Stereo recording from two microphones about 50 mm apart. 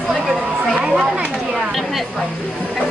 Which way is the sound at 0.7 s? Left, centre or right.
Centre.